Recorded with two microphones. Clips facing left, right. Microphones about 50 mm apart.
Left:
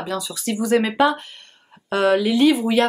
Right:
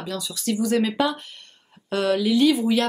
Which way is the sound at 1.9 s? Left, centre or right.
Left.